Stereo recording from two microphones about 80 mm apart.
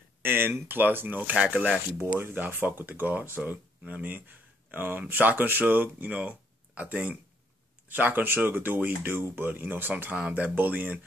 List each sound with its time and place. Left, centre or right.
0.2 s speech: right